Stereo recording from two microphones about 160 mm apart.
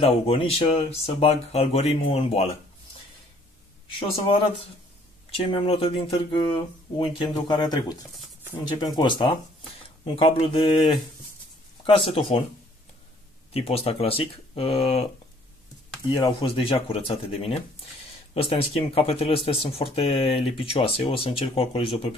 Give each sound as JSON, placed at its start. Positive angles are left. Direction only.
{"t": 0.0, "sound": "speech", "side_deg": 35}
{"t": 4.0, "sound": "speech", "side_deg": 35}
{"t": 11.8, "sound": "speech", "side_deg": 35}
{"t": 13.5, "sound": "speech", "side_deg": 40}
{"t": 16.1, "sound": "speech", "side_deg": 30}